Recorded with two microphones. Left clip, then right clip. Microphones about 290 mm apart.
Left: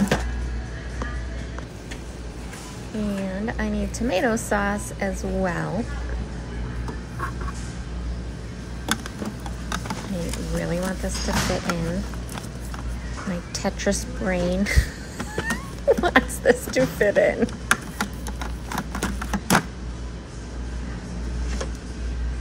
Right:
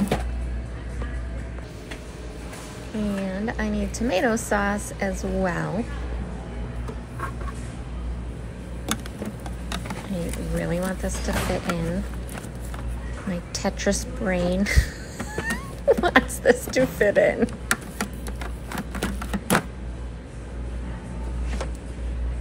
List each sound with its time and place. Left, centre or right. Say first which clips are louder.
3.0 s a woman's voice: even; centre
9.7 s speech: left 3 dB; centre
13.3 s a woman's voice: even; centre
18.7 s a sound: left 2 dB; centre